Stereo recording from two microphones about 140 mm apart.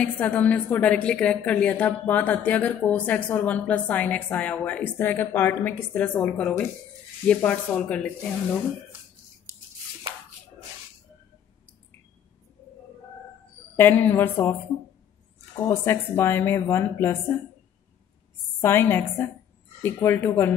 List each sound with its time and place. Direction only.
0.0 s a woman's voice: 10° left (ahead or behind)
13.7 s a woman's voice: 15° left (ahead or behind)
15.6 s a woman's voice: 20° left (ahead or behind)
18.6 s a woman's voice: 15° left (ahead or behind)